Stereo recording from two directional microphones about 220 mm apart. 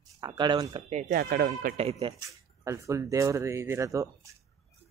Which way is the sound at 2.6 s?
15° right (ahead or behind).